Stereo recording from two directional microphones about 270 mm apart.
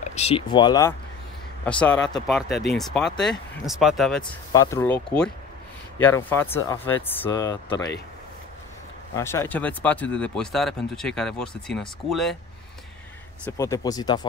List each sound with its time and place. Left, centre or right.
0.1 s speech: left; by 4.2 s centre
4.2 s speech: centre
9.1 s speech: centre
13.5 s speech: centre